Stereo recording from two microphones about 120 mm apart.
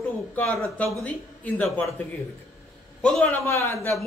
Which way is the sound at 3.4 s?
25° left (ahead or behind).